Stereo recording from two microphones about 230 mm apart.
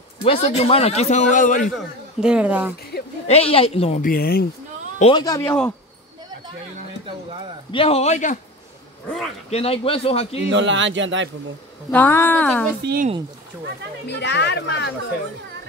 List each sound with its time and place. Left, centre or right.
0.2 s a man's voice: left
2.1 s speech: centre
2.9 s a sound: left
3.3 s a man's voice: left
4.0 s speech: left
5.1 s speech: centre
7.7 s a man's voice: left
9.0 s a man's voice: centre
9.5 s a man's voice: left
10.5 s speech: right
11.9 s speech: centre
12.8 s speech: right
14.0 s speech: left